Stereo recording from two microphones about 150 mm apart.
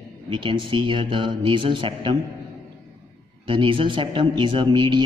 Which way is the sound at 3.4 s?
35° right (ahead or behind).